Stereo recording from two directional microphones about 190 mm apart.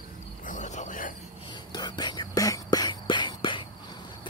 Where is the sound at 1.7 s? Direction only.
20° left (ahead or behind).